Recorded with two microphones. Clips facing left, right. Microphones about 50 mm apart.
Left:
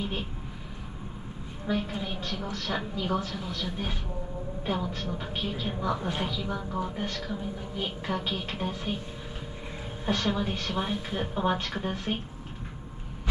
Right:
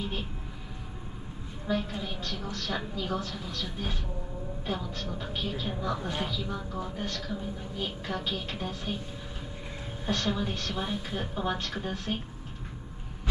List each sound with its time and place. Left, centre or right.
1.7 s a woman's voice: centre
10.0 s a woman's voice: centre